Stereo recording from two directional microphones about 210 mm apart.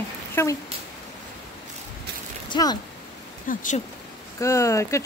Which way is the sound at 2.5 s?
20° left (ahead or behind).